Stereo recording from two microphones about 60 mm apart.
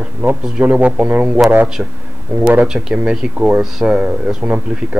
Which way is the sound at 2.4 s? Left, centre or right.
Right.